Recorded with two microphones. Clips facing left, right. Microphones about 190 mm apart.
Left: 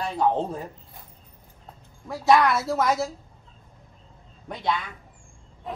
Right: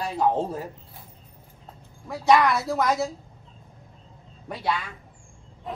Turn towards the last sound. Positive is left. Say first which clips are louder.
# even
turn(degrees=0)  # may be behind; listen again after turning